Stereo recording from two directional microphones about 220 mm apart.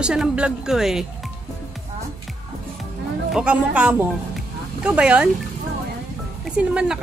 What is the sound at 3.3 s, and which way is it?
Speech, 5° right (ahead or behind).